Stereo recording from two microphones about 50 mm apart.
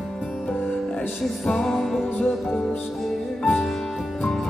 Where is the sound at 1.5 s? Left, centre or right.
Centre.